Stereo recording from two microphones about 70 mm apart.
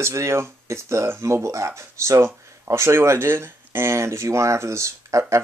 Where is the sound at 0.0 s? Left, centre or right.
Right.